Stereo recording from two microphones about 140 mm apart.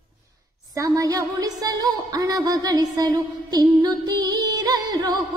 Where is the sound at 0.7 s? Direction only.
25° right (ahead or behind).